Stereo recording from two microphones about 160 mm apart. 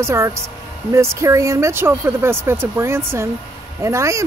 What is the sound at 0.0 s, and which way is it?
Speech, 15° right (ahead or behind).